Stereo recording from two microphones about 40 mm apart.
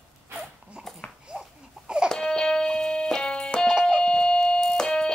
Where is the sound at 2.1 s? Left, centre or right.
Centre.